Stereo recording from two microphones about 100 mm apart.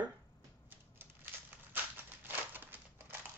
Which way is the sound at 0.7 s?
20° right (ahead or behind).